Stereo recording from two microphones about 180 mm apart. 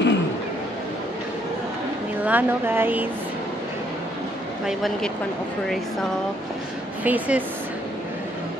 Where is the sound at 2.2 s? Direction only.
10° right (ahead or behind).